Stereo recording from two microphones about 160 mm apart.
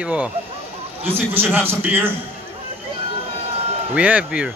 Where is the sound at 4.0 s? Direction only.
10° right (ahead or behind).